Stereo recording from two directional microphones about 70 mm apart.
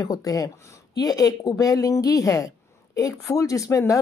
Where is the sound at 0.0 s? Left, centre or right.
Left.